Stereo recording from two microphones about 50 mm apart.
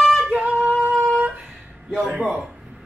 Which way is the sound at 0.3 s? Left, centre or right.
Right.